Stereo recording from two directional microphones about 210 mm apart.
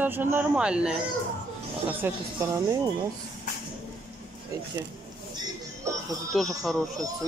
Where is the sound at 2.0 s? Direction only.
15° right (ahead or behind).